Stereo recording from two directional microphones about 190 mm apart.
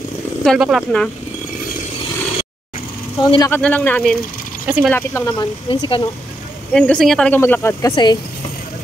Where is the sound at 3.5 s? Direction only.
5° left (ahead or behind).